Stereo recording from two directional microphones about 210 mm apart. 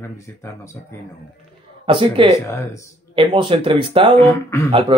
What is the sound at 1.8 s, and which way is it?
Speech, 25° right (ahead or behind).